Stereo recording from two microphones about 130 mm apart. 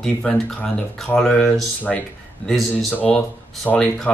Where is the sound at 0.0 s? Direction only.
10° left (ahead or behind).